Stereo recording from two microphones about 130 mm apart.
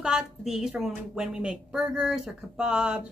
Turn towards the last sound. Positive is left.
turn(degrees=-5)  # may be behind; listen again after turning